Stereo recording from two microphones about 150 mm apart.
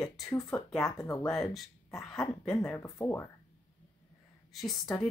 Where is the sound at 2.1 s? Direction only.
Centre (ahead or behind).